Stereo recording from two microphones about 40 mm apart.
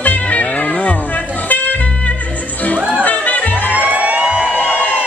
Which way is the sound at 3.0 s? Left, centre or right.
Left.